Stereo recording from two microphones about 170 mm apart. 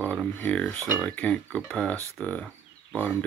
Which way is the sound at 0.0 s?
5° left (ahead or behind).